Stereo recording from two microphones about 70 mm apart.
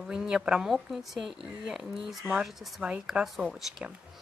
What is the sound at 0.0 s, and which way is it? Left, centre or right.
Speech, centre.